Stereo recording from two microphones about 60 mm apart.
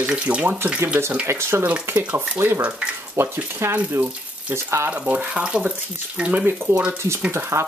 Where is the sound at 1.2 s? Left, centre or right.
Right.